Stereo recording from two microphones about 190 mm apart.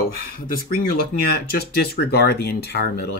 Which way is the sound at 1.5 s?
55° left (ahead or behind).